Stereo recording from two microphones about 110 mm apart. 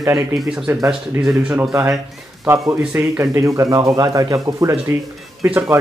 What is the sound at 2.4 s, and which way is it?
A man's voice, 20° right (ahead or behind).